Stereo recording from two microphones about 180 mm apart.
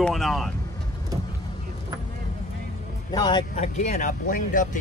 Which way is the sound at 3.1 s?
25° left (ahead or behind).